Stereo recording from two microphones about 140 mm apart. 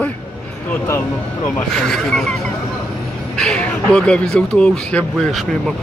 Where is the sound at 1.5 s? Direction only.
5° left (ahead or behind).